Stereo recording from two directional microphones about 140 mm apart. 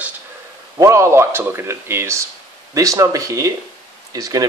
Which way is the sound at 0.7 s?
20° right (ahead or behind).